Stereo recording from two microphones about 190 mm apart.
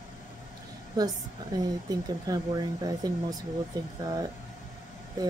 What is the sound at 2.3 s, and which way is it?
Speech, 20° right (ahead or behind).